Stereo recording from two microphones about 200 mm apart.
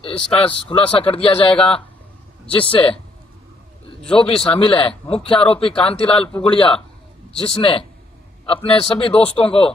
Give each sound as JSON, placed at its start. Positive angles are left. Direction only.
{"t": 0.0, "sound": "a man's voice", "side_deg": 25}
{"t": 2.5, "sound": "a man's voice", "side_deg": 25}
{"t": 4.0, "sound": "a man's voice", "side_deg": 5}
{"t": 4.4, "sound": "a man's voice", "side_deg": 25}